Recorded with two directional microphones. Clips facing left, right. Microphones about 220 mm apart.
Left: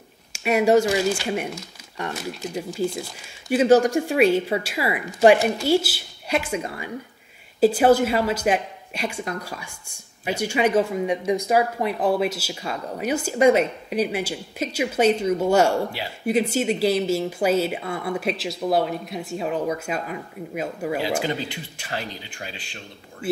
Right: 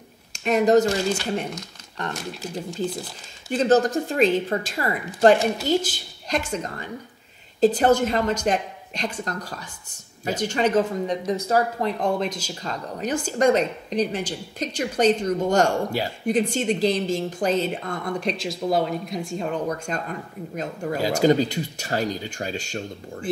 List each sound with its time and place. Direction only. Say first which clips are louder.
0.3 s a woman's voice: even; 10° left (ahead or behind)
21.0 s speech: right 11 dB; 40° right (ahead or behind)